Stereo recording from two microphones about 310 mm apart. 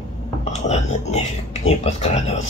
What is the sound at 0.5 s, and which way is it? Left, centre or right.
Speech, left.